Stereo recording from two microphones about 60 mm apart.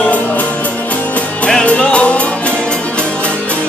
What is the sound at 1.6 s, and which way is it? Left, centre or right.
Music, centre.